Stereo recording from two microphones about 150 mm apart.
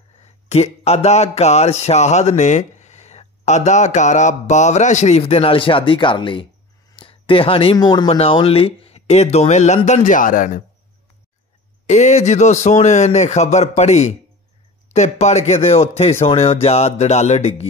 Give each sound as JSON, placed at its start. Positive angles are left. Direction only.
{"t": 0.8, "sound": "speech", "side_deg": 45}
{"t": 7.0, "sound": "a sound", "side_deg": 35}
{"t": 7.7, "sound": "a man's voice", "side_deg": 30}
{"t": 11.8, "sound": "speech", "side_deg": 50}